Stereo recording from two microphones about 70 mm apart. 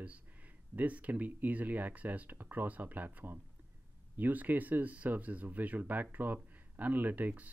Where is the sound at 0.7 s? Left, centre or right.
Right.